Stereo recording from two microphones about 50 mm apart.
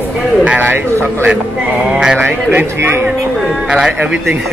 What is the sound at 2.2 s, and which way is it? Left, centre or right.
Speech, right.